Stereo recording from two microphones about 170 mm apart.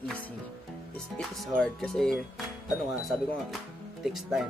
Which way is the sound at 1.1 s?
5° left (ahead or behind).